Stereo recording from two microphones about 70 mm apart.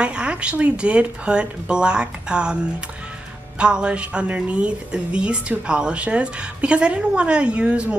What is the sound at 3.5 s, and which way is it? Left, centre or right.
A woman's voice, centre.